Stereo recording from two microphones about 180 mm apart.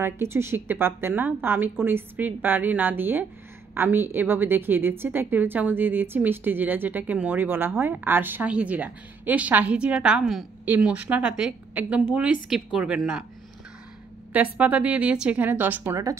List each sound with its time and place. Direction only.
0.0 s a woman's voice: 15° right (ahead or behind)
14.3 s a woman's voice: 10° right (ahead or behind)